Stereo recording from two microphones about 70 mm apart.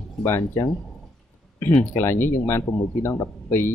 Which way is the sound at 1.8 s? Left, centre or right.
Left.